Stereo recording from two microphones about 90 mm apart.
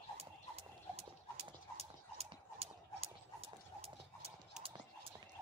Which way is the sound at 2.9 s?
90° right.